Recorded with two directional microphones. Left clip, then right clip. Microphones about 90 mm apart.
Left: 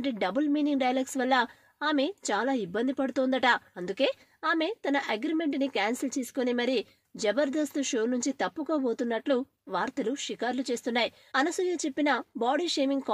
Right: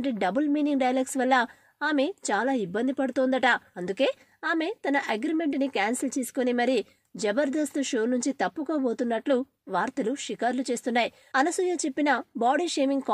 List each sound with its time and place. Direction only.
0.0 s a woman's voice: 40° right (ahead or behind)
3.7 s a woman's voice: 35° right (ahead or behind)